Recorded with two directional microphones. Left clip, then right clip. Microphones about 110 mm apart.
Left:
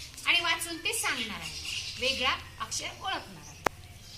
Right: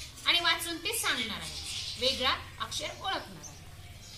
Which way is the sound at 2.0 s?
10° left (ahead or behind).